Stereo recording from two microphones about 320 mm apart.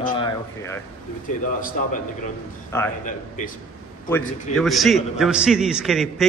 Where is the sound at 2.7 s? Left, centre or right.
Centre.